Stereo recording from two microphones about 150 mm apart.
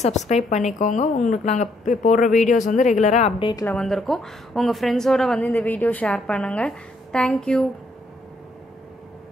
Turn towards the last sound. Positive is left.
turn(degrees=5)  # may be behind; listen again after turning